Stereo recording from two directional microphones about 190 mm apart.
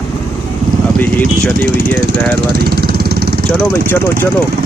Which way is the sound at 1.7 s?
60° right (ahead or behind).